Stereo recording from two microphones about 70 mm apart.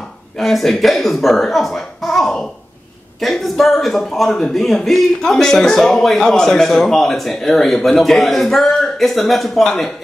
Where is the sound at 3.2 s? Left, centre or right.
Centre.